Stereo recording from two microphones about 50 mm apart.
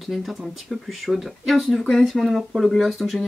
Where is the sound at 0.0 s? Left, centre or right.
Centre.